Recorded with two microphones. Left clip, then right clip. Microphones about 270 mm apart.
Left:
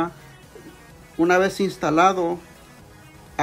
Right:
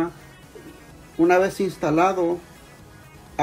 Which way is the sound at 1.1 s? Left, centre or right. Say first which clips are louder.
Even; centre.